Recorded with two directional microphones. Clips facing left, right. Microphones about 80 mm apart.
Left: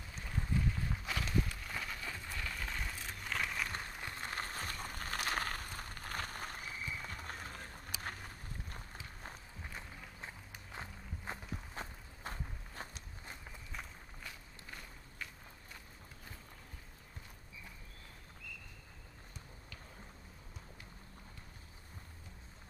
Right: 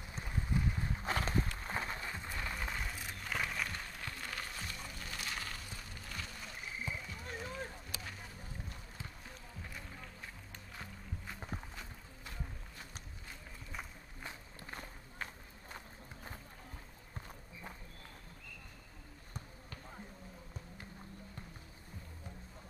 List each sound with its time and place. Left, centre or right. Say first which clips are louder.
0.2 s boat: even; centre
1.0 s run: right 2 dB; right; by 2.8 s centre
2.8 s a sound: right 1 dB; centre
3.7 s music: left 1 dB; left
7.0 s a sound: even; left
7.8 s run: left 3 dB; left
9.6 s music: right 1 dB; left
11.2 s walk: left 2 dB; left
14.2 s walk: right 5 dB; right